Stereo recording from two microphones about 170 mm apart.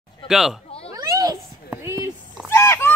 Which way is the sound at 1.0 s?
20° right (ahead or behind).